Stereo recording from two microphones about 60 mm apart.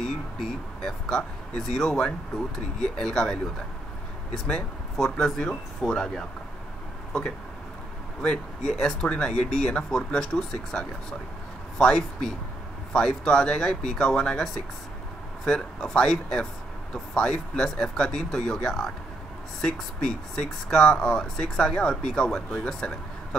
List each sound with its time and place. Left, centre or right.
0.0 s speech: centre
8.2 s speech: centre